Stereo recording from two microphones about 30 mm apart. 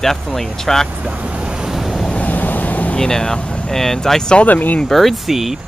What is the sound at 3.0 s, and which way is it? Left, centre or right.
Speech, centre.